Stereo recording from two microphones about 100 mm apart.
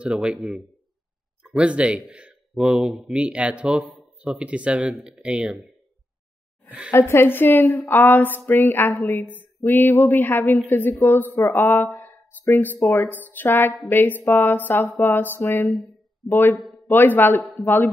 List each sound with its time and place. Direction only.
0.0 s speech: 10° right (ahead or behind)
6.9 s a sound: 25° left (ahead or behind)
11.5 s speech: 20° left (ahead or behind)
12.7 s a woman's voice: 30° left (ahead or behind)
13.1 s a sound: 20° left (ahead or behind)
17.4 s speech: 15° left (ahead or behind)